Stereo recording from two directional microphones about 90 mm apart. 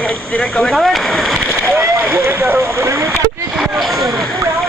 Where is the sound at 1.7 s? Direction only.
30° right (ahead or behind).